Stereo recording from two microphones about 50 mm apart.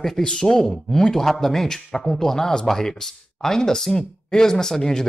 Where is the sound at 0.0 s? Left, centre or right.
Centre.